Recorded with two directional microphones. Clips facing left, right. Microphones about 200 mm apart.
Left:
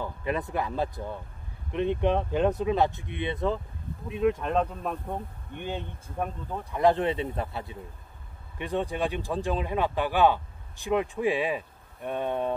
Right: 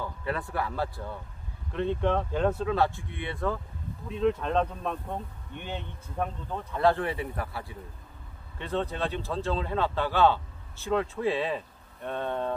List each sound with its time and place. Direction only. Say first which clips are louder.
0.0 s a man's voice: left 2 dB; 20° left (ahead or behind)